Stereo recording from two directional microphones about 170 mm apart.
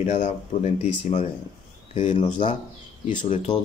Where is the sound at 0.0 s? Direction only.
40° left (ahead or behind).